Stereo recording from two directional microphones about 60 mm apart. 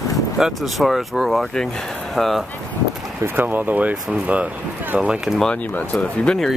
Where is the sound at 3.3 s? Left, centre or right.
Right; by 5.4 s centre.